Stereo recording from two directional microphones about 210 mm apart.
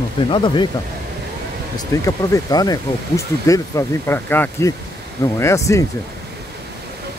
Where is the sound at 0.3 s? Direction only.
20° left (ahead or behind).